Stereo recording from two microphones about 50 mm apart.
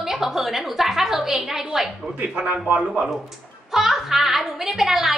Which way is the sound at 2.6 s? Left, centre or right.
Right.